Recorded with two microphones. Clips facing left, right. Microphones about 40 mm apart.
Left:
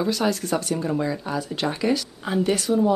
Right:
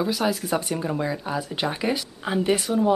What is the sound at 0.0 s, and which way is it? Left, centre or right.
Speech, centre.